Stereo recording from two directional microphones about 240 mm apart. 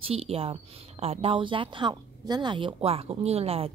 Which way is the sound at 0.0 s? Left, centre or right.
Right.